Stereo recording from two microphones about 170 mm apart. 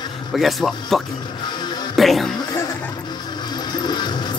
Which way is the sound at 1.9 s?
Centre (ahead or behind).